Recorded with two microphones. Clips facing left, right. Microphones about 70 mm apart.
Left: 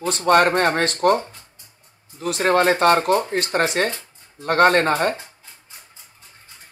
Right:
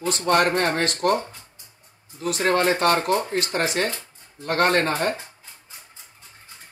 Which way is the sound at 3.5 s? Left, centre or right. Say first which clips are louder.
Left 5 dB; left.